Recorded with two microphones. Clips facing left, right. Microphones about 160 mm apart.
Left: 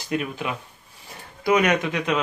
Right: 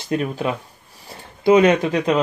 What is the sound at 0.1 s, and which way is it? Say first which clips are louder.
Speech: right 5 dB; 35° right (ahead or behind).